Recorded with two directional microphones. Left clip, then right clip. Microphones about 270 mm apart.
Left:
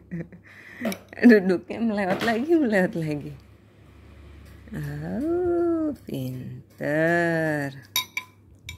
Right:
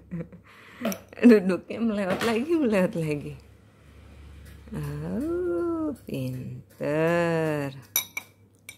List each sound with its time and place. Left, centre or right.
0.1 s speech: centre
4.7 s speech: centre